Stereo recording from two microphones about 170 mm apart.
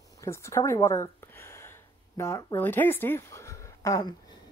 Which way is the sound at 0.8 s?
15° left (ahead or behind).